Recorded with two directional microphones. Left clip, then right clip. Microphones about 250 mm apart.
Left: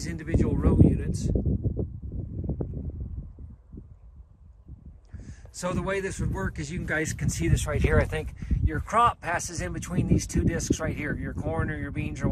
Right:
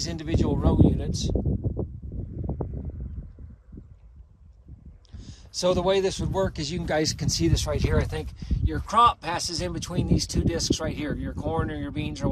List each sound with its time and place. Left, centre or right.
0.0 s speech: centre
2.4 s a sound: centre
5.1 s a man's voice: centre